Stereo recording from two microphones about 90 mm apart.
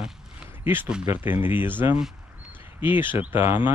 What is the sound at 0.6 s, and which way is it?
Speech, 20° right (ahead or behind).